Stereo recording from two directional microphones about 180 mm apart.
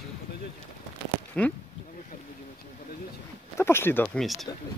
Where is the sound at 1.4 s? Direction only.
5° left (ahead or behind).